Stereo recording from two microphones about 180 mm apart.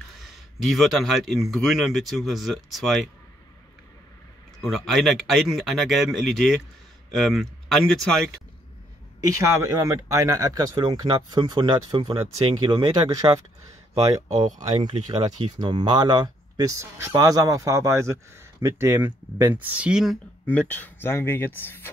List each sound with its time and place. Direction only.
0.2 s a man's voice: centre (ahead or behind)
4.6 s a man's voice: centre (ahead or behind)
9.3 s speech: 15° right (ahead or behind)
14.8 s speech: 25° right (ahead or behind); by 20.2 s 5° right (ahead or behind)
20.4 s speech: 10° left (ahead or behind)